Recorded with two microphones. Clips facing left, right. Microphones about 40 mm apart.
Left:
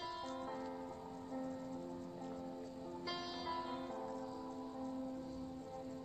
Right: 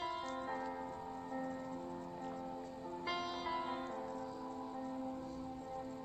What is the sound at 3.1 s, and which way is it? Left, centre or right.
Music, right.